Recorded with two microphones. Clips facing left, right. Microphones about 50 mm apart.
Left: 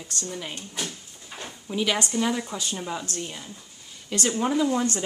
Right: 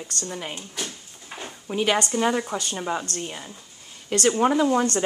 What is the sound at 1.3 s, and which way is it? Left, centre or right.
Drawer open or close, centre.